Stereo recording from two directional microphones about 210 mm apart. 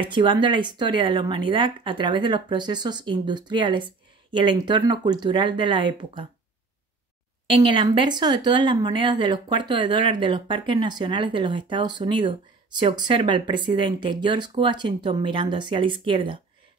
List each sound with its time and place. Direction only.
0.0 s speech: 20° right (ahead or behind)
7.4 s speech: 25° right (ahead or behind)